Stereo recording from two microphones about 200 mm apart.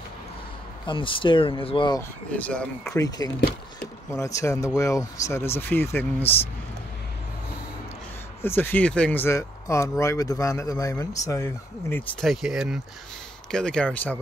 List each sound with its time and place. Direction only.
0.8 s speech: 25° left (ahead or behind)
2.3 s speech: 5° left (ahead or behind)
3.3 s speech: 50° left (ahead or behind)
4.1 s speech: 15° left (ahead or behind)
8.4 s speech: 10° left (ahead or behind)
12.3 s speech: centre (ahead or behind)